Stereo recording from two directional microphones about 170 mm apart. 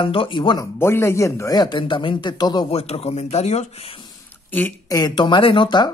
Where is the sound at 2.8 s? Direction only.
40° left (ahead or behind).